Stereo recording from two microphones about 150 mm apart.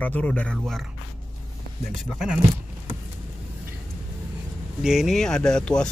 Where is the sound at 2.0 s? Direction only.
5° right (ahead or behind).